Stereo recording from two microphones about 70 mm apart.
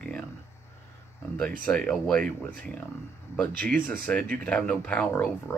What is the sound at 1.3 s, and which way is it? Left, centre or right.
Speech, left.